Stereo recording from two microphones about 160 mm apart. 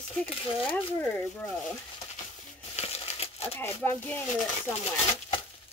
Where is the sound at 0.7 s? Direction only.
10° left (ahead or behind).